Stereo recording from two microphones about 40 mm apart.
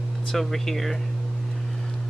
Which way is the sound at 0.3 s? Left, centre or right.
Centre.